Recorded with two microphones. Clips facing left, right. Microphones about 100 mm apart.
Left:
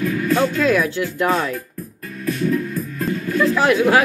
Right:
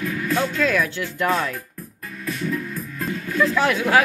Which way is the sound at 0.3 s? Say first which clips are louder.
Left 4 dB; 15° left (ahead or behind).